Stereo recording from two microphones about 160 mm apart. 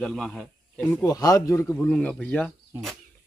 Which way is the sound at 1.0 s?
20° left (ahead or behind).